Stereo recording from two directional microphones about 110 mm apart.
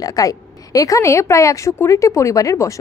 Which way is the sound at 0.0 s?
35° left (ahead or behind).